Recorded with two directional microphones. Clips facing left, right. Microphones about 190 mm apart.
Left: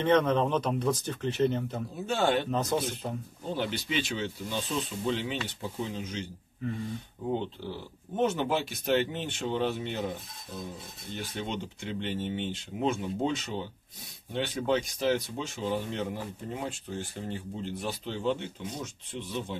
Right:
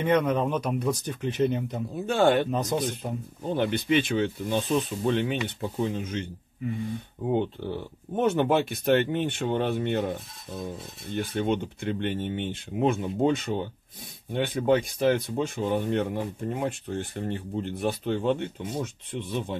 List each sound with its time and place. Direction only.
0.0 s speech: 10° right (ahead or behind)
2.0 s speech: 55° right (ahead or behind)
2.5 s speech: 15° right (ahead or behind)
3.5 s speech: 55° right (ahead or behind)
8.2 s speech: 55° right (ahead or behind)
11.1 s speech: 55° right (ahead or behind)